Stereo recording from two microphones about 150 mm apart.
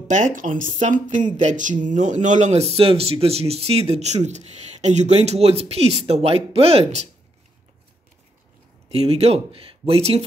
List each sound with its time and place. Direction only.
0.4 s speech: 60° right (ahead or behind)
8.8 s speech: 45° right (ahead or behind)